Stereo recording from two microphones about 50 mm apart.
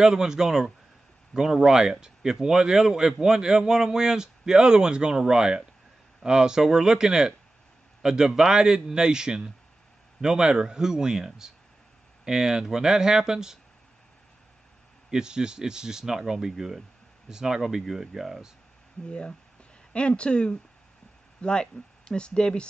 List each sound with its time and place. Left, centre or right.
0.0 s speech: centre
15.0 s speech: centre
19.0 s speech: left